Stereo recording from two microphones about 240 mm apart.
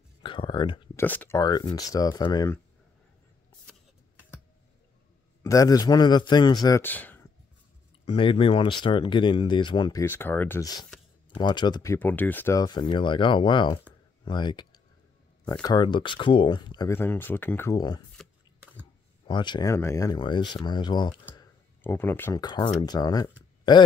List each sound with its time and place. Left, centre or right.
0.2 s a sound: left
1.0 s speech: centre
5.4 s speech: centre
8.0 s speech: left
10.0 s speech: centre
18.1 s a sound: centre
19.2 s speech: centre